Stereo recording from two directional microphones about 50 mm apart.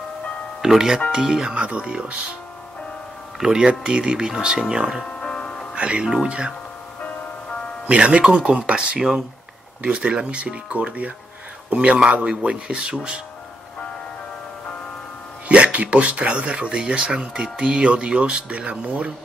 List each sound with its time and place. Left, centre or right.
0.6 s speech: centre
3.3 s speech: centre
5.2 s music: centre
5.8 s speech: right
7.9 s speech: right
15.4 s speech: right